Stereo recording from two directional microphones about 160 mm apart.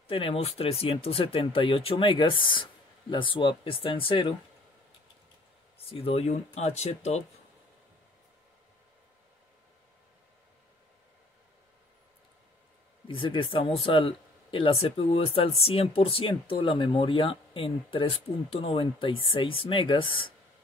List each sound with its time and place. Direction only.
0.1 s speech: 35° left (ahead or behind)
5.8 s speech: 35° left (ahead or behind)
13.1 s speech: 30° left (ahead or behind)